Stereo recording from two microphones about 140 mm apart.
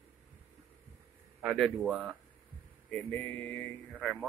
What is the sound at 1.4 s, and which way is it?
Speech, 5° right (ahead or behind).